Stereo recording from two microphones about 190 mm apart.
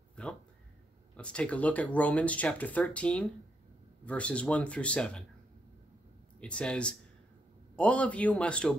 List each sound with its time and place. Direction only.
0.1 s a sound: 5° left (ahead or behind)
1.1 s speech: 5° left (ahead or behind)
6.4 s speech: 5° left (ahead or behind)